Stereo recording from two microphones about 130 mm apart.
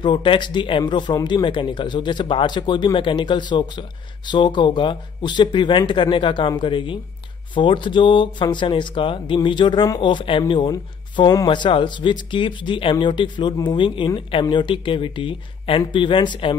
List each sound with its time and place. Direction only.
0.0 s speech: 40° left (ahead or behind)